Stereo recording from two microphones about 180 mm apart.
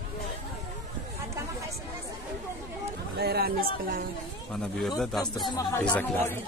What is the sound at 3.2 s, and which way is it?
Speech, 60° right (ahead or behind).